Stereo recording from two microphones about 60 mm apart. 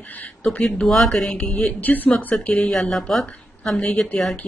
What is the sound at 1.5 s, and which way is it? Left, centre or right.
A woman's voice, left.